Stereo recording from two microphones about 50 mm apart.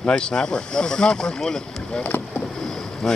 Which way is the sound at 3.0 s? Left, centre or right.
Centre.